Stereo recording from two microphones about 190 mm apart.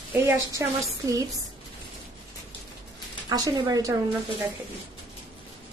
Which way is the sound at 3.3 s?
20° right (ahead or behind).